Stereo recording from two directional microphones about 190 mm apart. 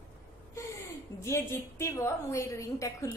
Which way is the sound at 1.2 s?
15° left (ahead or behind).